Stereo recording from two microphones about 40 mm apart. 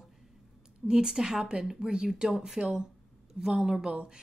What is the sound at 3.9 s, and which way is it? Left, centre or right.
Speech, right.